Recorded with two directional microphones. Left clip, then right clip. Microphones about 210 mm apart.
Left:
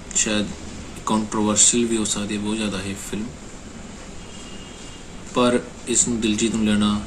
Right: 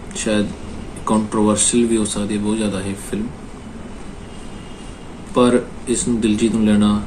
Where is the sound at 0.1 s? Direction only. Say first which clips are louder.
Right 3 dB; 5° left (ahead or behind).